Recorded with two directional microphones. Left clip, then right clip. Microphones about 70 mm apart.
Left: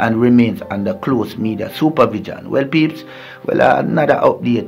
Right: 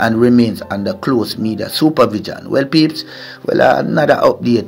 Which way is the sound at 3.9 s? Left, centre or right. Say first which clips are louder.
Right 2 dB; right.